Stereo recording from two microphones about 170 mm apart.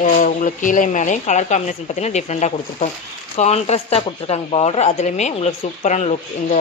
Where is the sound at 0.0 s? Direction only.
50° left (ahead or behind).